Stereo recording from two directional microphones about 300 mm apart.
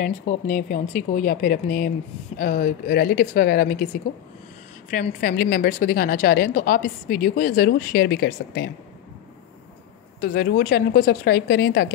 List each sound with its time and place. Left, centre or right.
0.0 s a woman's voice: left
4.9 s a woman's voice: left
10.2 s a woman's voice: left